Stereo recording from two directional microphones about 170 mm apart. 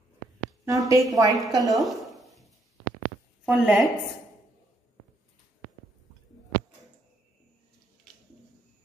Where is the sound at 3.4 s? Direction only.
Centre (ahead or behind).